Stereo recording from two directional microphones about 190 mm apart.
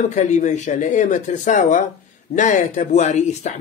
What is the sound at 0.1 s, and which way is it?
Speech, 40° left (ahead or behind).